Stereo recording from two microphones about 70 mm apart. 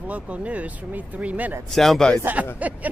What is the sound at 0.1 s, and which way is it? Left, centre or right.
Speech, centre.